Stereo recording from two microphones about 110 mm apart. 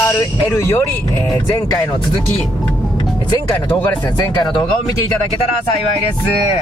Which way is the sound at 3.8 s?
40° left (ahead or behind).